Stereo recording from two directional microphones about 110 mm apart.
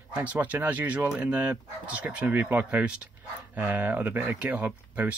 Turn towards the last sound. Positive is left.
turn(degrees=-15)  # may be behind; listen again after turning